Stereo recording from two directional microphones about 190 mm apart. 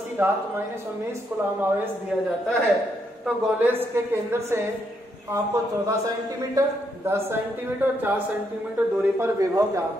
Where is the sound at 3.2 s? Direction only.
10° right (ahead or behind).